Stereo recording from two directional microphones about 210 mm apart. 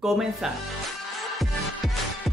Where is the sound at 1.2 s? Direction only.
Centre (ahead or behind).